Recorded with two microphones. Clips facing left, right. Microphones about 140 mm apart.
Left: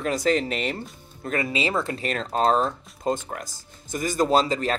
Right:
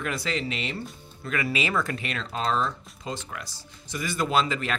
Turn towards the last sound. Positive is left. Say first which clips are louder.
# left 4 dB
turn(degrees=35)  # may be behind; listen again after turning